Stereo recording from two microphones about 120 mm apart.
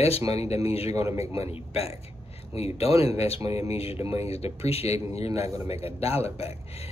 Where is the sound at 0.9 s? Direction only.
25° right (ahead or behind).